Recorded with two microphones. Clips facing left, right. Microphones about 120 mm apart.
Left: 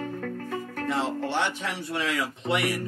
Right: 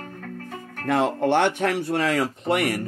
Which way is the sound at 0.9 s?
55° right (ahead or behind).